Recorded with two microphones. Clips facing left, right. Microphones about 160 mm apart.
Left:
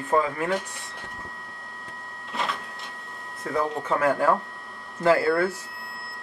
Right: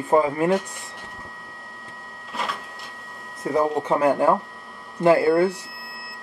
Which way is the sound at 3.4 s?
25° right (ahead or behind).